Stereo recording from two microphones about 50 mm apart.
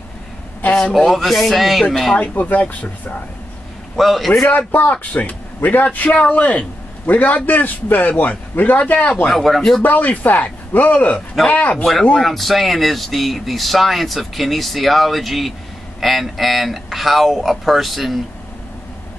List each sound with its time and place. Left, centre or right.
0.9 s speech: centre
2.1 s a man's voice: left
3.9 s a man's voice: centre
4.5 s a man's voice: left
9.3 s speech: centre
9.8 s a man's voice: left
12.2 s speech: centre